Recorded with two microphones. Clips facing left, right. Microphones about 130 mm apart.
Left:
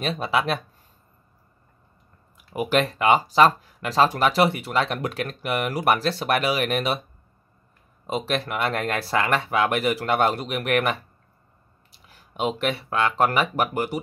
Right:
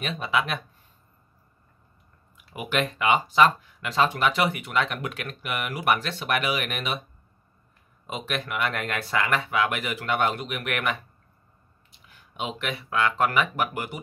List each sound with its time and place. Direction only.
0.0 s speech: 35° left (ahead or behind)
2.3 s speech: 35° left (ahead or behind)
8.1 s speech: 35° left (ahead or behind)